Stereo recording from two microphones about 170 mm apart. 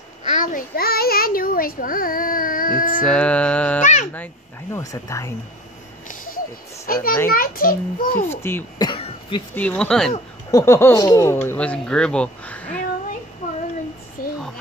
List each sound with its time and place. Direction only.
0.3 s child singing: 50° left (ahead or behind)
3.1 s music: 5° left (ahead or behind)
3.8 s a sound: 45° left (ahead or behind)
4.7 s speech: 20° left (ahead or behind)
6.9 s a child's voice: 60° left (ahead or behind)
8.3 s speech: 15° left (ahead or behind)
8.7 s cough: 30° left (ahead or behind)
9.6 s speech: 5° left (ahead or behind)
10.5 s speech: 15° left (ahead or behind)
11.4 s speech: 5° left (ahead or behind)